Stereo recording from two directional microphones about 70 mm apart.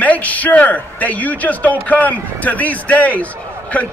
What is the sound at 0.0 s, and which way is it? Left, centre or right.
A man's voice, left.